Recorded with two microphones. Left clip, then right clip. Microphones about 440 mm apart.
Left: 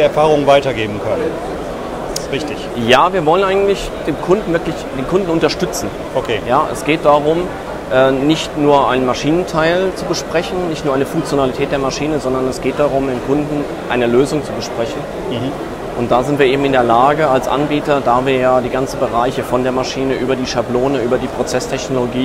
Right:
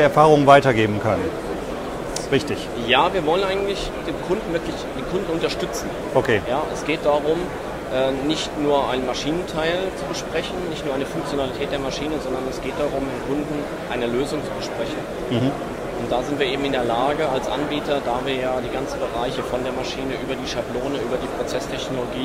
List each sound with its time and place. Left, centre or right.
0.0 s a man's voice: right
2.9 s speech: left
6.5 s speech: left
13.9 s speech: left
16.1 s speech: left